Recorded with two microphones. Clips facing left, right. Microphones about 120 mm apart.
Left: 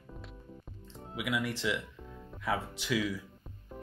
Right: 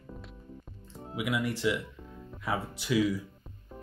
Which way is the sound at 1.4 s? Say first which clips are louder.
Right 4 dB; 10° right (ahead or behind).